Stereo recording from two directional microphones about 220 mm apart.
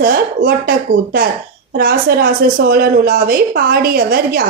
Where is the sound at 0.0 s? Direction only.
40° right (ahead or behind).